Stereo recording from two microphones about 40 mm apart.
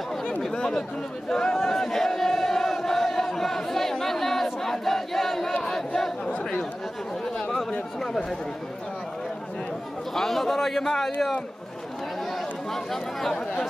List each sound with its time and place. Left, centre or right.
0.4 s a man's voice: centre
1.6 s battle cry: centre
5.6 s crowd: centre
8.0 s a man's voice: centre
10.1 s a man's voice: centre
12.7 s a man's voice: centre